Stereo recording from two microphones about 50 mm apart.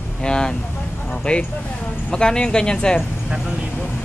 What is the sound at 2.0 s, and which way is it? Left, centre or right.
Speech, centre.